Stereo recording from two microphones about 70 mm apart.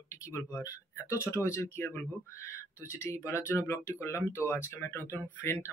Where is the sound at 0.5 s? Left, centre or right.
Left.